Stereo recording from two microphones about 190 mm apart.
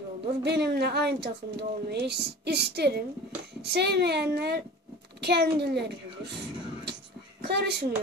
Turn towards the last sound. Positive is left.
turn(degrees=-60)  # may be behind; listen again after turning